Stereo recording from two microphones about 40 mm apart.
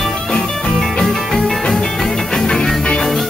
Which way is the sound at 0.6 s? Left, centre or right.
Centre.